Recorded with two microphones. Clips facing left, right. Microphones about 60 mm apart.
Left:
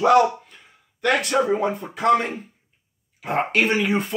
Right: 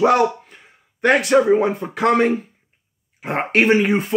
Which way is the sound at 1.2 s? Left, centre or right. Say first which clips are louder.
Right 6 dB; right.